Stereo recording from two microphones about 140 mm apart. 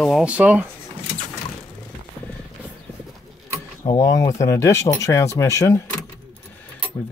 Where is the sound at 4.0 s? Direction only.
25° left (ahead or behind).